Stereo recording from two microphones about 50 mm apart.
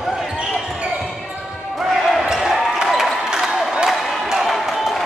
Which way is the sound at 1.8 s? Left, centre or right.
Centre.